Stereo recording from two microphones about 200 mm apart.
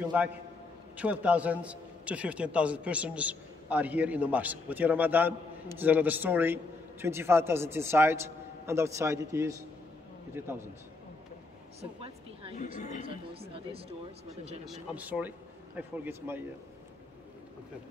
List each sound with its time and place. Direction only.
0.1 s a man's voice: 10° right (ahead or behind)
11.8 s a sound: 30° right (ahead or behind)
12.7 s speech: 40° left (ahead or behind)
13.0 s speech: 30° right (ahead or behind)
14.7 s a man's voice: 5° right (ahead or behind)